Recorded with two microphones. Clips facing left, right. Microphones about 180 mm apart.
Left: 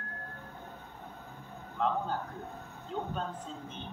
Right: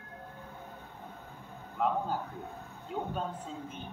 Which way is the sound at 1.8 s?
10° right (ahead or behind).